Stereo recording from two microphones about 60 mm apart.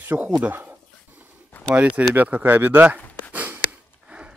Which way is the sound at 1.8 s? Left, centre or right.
Right.